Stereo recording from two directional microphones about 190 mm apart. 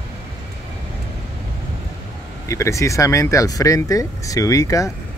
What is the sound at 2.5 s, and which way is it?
Speech, 15° left (ahead or behind).